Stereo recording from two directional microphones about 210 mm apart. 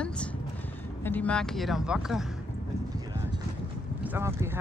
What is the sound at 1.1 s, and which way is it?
Speech, 5° left (ahead or behind).